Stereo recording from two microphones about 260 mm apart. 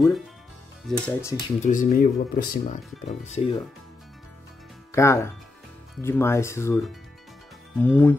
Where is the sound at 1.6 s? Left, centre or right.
Left.